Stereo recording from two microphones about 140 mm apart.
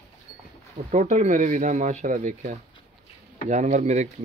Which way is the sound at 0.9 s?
60° right (ahead or behind).